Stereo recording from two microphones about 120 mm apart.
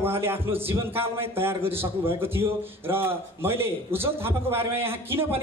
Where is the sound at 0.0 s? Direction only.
20° right (ahead or behind).